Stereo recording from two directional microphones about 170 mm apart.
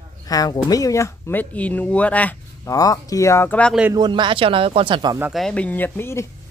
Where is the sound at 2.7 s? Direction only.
20° left (ahead or behind).